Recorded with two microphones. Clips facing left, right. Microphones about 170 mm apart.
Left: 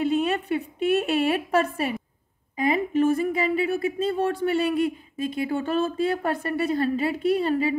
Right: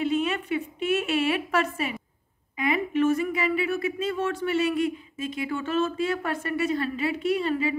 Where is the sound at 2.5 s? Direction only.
35° left (ahead or behind).